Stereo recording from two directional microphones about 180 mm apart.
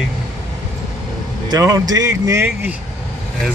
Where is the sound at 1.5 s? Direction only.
20° right (ahead or behind).